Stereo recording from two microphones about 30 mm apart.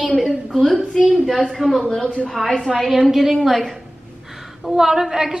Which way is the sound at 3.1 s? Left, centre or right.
Centre.